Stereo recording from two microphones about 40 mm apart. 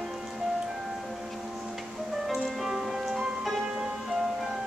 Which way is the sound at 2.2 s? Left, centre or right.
Centre.